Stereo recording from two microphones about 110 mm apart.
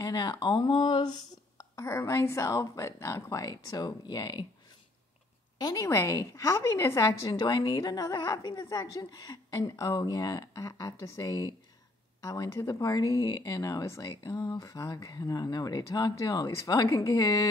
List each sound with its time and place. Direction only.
0.0 s speech: 40° left (ahead or behind)
1.6 s a woman's voice: 25° left (ahead or behind)
5.6 s a woman's voice: 35° left (ahead or behind)